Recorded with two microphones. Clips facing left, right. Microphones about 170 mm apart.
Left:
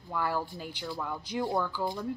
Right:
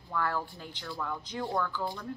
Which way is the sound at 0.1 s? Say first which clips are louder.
Left 1 dB; 10° left (ahead or behind).